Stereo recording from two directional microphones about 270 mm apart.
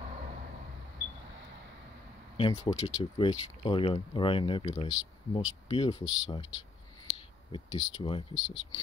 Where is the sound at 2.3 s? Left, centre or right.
Centre.